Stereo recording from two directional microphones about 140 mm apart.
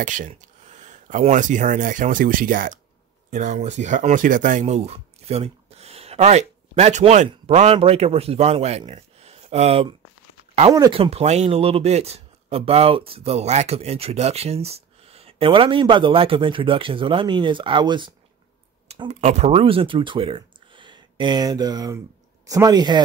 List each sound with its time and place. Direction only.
0.0 s speech: 70° right (ahead or behind)
0.3 s a sound: 60° right (ahead or behind)
1.3 s speech: 65° right (ahead or behind)
3.3 s a man's voice: 60° right (ahead or behind)
10.9 s a man's voice: 45° right (ahead or behind)
19.0 s speech: 55° right (ahead or behind); by 23.0 s 30° right (ahead or behind)